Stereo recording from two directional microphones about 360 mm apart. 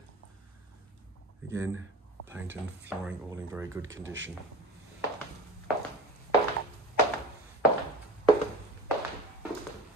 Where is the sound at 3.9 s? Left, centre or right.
Right.